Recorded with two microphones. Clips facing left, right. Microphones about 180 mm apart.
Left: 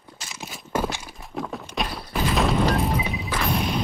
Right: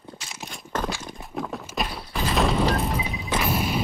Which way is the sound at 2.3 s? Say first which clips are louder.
Even; centre (ahead or behind).